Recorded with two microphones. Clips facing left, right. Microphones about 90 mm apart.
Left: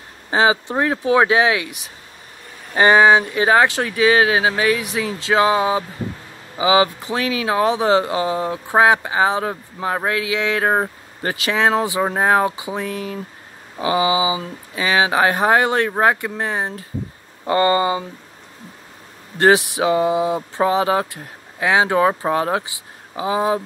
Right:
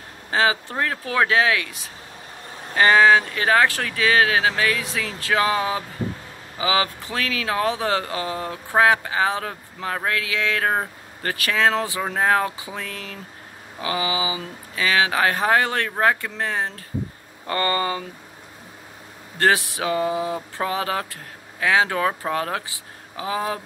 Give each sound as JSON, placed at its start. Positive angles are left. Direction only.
{"t": 0.3, "sound": "speech", "side_deg": 20}
{"t": 19.3, "sound": "speech", "side_deg": 20}